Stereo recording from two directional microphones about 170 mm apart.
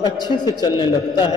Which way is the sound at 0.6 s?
25° left (ahead or behind).